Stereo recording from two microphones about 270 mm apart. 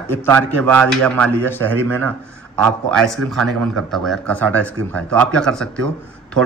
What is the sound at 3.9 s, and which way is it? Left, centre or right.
Speech, centre.